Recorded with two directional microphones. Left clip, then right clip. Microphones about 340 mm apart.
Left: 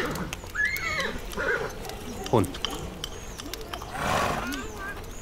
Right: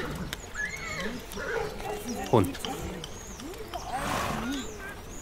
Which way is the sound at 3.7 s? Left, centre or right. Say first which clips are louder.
Left 3 dB; left.